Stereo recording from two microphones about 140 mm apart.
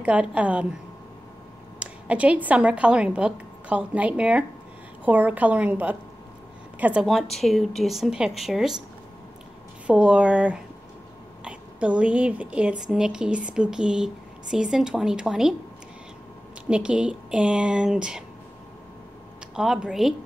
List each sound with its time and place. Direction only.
0.0 s speech: 10° right (ahead or behind)
1.8 s a woman's voice: 10° right (ahead or behind)
9.8 s a woman's voice: 10° right (ahead or behind)
16.6 s speech: 5° right (ahead or behind)
19.5 s a woman's voice: 5° right (ahead or behind)